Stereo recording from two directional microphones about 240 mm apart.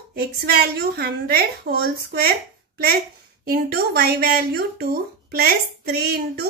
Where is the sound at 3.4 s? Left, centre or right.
Right.